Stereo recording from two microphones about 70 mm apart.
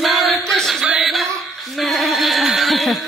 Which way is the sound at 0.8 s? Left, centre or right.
Centre.